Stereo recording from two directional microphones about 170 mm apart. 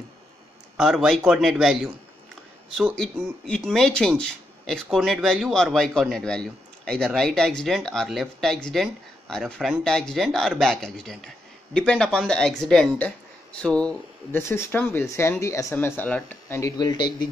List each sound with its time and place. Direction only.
0.7 s a man's voice: centre (ahead or behind)
3.4 s a man's voice: 5° left (ahead or behind); by 17.3 s 25° left (ahead or behind)